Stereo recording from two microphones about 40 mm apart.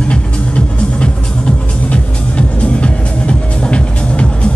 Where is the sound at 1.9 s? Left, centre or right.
Left.